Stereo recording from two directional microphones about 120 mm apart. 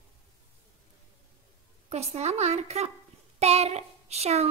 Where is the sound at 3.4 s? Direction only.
60° right (ahead or behind).